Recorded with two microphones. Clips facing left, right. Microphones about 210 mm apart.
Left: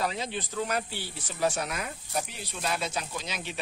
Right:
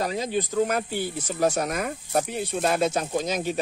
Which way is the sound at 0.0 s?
45° right (ahead or behind).